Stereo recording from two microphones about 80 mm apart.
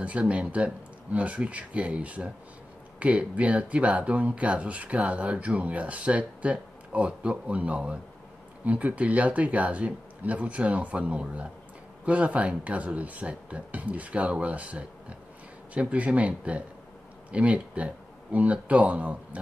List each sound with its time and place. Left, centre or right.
0.0 s speech: centre